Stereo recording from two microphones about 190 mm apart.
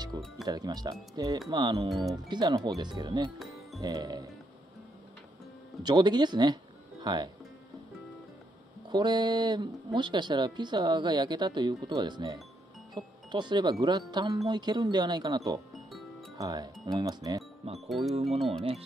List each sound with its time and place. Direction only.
0.1 s speech: 20° right (ahead or behind)
5.8 s speech: 20° right (ahead or behind)
8.9 s speech: 25° right (ahead or behind)
17.7 s speech: centre (ahead or behind)
18.1 s speech: 30° right (ahead or behind)